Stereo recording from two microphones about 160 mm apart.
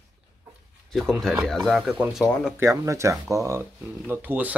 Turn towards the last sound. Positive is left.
turn(degrees=-10)  # may be behind; listen again after turning